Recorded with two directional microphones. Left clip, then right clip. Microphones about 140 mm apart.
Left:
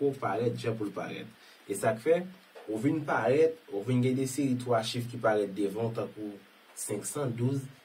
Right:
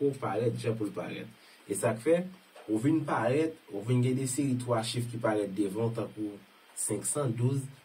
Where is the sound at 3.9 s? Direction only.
15° left (ahead or behind).